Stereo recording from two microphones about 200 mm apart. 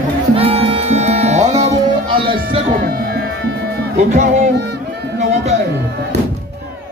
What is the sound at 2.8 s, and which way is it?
Music, 50° right (ahead or behind).